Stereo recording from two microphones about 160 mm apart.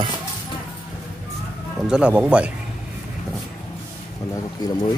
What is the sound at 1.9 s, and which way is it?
Speech, 5° right (ahead or behind).